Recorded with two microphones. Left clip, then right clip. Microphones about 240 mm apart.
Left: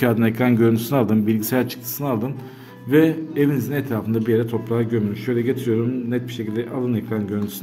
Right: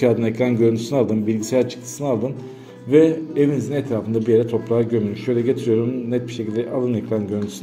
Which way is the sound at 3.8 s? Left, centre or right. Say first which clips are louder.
Right 2 dB; left.